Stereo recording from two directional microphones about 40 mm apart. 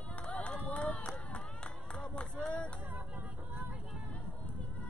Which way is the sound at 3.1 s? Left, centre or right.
Right.